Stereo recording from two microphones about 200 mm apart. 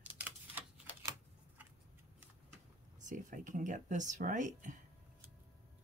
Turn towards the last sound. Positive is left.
turn(degrees=-40)  # may be behind; listen again after turning